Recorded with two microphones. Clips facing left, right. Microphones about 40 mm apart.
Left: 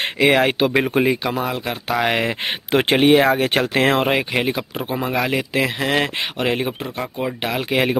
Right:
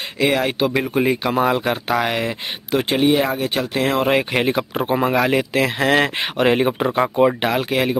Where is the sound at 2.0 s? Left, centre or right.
Left.